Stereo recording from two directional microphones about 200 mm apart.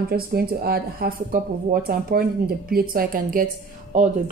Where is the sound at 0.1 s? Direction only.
50° right (ahead or behind).